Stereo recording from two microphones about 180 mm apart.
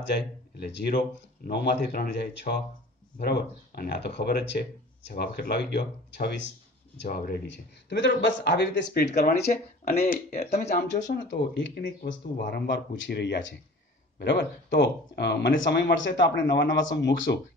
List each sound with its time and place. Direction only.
0.1 s speech: 70° left (ahead or behind)
7.1 s speech: 55° left (ahead or behind)
7.9 s speech: 70° left (ahead or behind)
9.5 s speech: 45° left (ahead or behind)
10.8 s speech: 70° left (ahead or behind)
11.2 s speech: 85° left
11.8 s speech: 60° left (ahead or behind); by 13.6 s 85° left
14.1 s speech: 70° left (ahead or behind)